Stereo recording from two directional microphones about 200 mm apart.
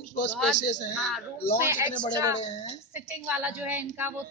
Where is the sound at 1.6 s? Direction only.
15° right (ahead or behind).